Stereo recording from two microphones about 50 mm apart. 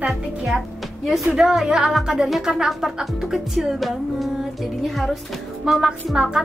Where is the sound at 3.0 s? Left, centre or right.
Centre.